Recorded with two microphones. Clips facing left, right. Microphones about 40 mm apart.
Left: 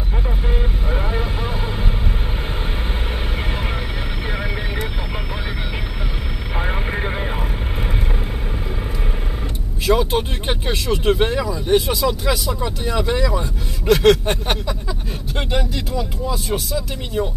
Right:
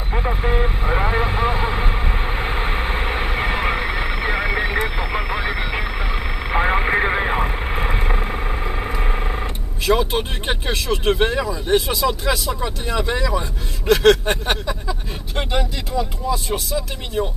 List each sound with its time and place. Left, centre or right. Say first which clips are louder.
0.1 s vehicle: right 6 dB; right
9.8 s speech: left 1 dB; centre